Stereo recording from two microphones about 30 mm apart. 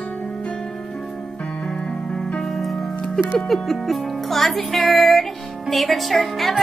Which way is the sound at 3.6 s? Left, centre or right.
Centre.